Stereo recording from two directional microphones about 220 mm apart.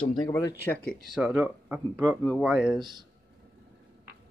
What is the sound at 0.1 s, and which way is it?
Speech, 15° left (ahead or behind).